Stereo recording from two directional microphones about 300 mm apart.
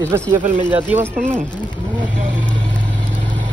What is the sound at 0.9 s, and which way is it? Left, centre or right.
Speech, centre.